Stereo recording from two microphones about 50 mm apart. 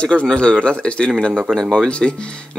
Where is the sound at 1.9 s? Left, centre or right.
Left.